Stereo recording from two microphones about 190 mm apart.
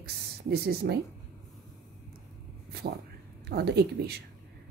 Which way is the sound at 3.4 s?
55° right (ahead or behind).